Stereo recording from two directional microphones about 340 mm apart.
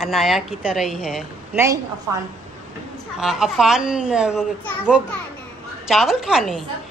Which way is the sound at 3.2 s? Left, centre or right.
Centre.